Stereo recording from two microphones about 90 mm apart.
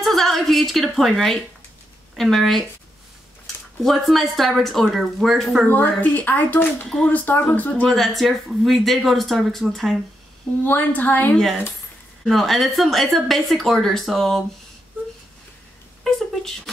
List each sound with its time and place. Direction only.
0.0 s a sound: 5° left (ahead or behind)
2.1 s speech: centre (ahead or behind)
3.8 s speech: centre (ahead or behind)
5.7 s speech: 20° left (ahead or behind)
7.9 s speech: centre (ahead or behind)
10.6 s speech: 20° left (ahead or behind)
12.3 s speech: centre (ahead or behind)
16.0 s speech: 5° left (ahead or behind)